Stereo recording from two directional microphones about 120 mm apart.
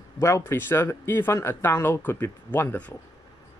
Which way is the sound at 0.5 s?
20° left (ahead or behind).